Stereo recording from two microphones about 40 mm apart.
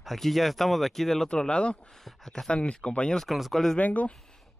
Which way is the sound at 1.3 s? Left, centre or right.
Left.